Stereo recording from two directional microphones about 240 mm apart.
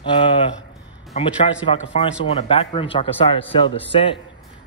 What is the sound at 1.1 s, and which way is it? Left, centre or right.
Speech, left.